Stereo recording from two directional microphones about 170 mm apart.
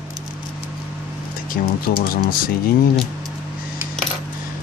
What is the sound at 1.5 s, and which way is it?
Speech, 55° left (ahead or behind).